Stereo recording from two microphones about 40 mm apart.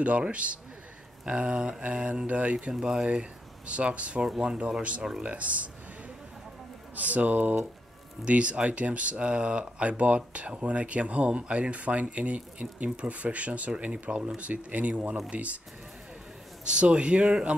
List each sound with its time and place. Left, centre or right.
0.0 s a man's voice: right
2.2 s speech: right
2.7 s a man's voice: centre
5.2 s speech: right
7.0 s speech: right
8.3 s speech: right
16.6 s a man's voice: right